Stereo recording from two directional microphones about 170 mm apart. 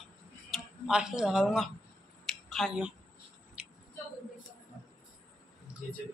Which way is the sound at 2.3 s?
Centre (ahead or behind).